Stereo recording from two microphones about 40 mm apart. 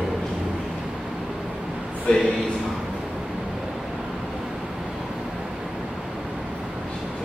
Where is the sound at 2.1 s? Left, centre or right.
Left.